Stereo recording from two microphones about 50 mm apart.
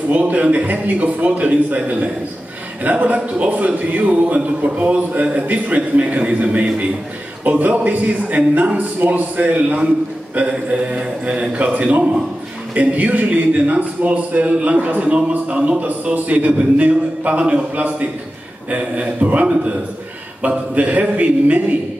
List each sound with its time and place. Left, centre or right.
0.1 s a man's voice: right
2.8 s a man's voice: right
19.4 s speech: centre
20.4 s a man's voice: right